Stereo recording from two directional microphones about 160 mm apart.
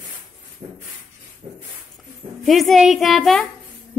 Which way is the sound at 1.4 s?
35° right (ahead or behind).